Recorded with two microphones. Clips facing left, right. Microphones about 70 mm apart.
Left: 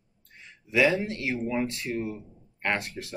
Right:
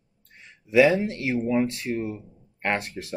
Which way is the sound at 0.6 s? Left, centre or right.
Right.